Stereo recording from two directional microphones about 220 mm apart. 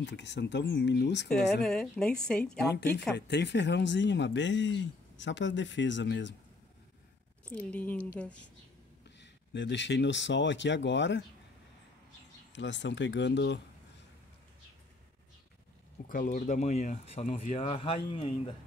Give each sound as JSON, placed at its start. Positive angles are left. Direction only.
{"t": 0.0, "sound": "speech", "side_deg": 50}
{"t": 1.6, "sound": "a woman's voice", "side_deg": 5}
{"t": 3.2, "sound": "speech", "side_deg": 50}
{"t": 7.4, "sound": "a woman's voice", "side_deg": 5}
{"t": 9.2, "sound": "speech", "side_deg": 55}
{"t": 12.5, "sound": "speech", "side_deg": 55}
{"t": 16.1, "sound": "speech", "side_deg": 40}